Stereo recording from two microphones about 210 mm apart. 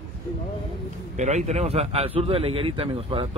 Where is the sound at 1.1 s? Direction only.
35° right (ahead or behind).